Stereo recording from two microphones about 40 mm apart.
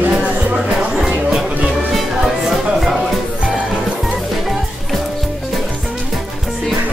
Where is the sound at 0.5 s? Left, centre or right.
Centre.